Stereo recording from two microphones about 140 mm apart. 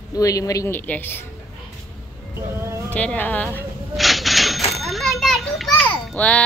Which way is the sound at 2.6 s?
20° right (ahead or behind).